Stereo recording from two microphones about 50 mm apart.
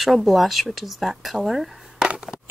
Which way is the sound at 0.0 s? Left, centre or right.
Centre.